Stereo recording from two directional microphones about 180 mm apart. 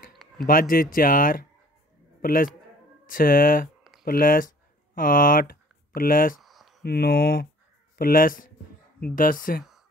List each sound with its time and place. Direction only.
0.5 s speech: 50° left (ahead or behind)
6.4 s a sound: centre (ahead or behind)
6.8 s speech: 60° left (ahead or behind)